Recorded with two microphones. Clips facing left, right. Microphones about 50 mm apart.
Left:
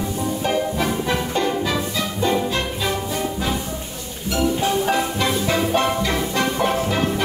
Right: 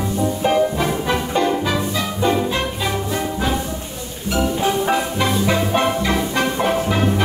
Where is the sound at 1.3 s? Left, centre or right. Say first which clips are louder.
Right 4 dB; right.